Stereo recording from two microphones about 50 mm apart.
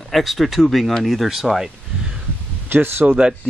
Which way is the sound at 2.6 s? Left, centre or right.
Right.